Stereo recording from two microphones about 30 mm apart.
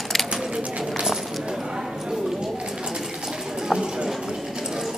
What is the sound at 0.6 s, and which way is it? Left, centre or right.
Run, right.